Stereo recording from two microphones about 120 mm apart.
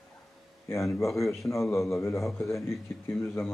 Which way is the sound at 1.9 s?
25° left (ahead or behind).